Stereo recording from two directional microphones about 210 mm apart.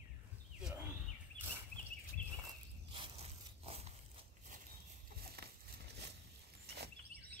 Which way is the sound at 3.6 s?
30° right (ahead or behind).